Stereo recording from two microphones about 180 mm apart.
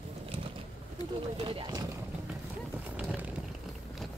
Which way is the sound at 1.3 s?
30° right (ahead or behind).